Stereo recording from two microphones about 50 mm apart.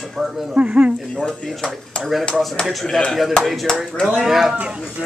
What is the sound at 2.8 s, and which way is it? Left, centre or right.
Speech, centre.